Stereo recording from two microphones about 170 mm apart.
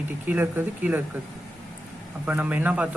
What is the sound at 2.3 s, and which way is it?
Speech, 10° right (ahead or behind).